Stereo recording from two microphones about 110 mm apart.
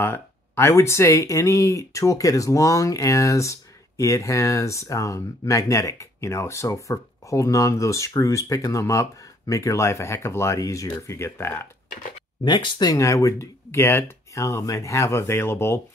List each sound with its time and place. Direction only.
0.0 s speech: 20° left (ahead or behind)
12.4 s speech: 45° left (ahead or behind)
12.9 s speech: 30° left (ahead or behind)